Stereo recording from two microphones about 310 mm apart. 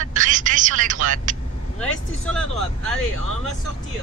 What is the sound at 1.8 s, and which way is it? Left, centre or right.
Speech, centre.